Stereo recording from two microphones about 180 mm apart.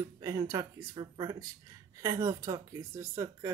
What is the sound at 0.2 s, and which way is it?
Speech, 15° right (ahead or behind).